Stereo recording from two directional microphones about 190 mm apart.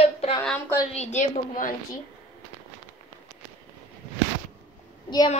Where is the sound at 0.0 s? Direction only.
35° left (ahead or behind).